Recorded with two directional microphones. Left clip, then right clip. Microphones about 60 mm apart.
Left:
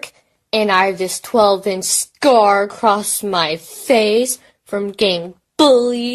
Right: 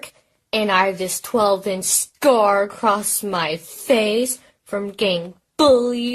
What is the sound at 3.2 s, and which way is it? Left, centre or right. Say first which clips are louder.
Speech: left 5 dB; left.